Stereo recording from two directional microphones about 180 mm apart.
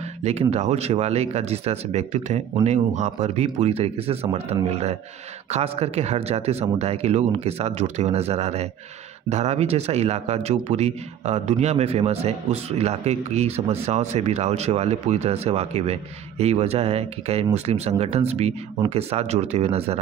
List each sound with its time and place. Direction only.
0.2 s speech: 35° right (ahead or behind)